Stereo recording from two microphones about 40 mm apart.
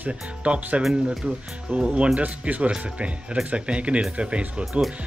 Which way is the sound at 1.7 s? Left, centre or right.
Right.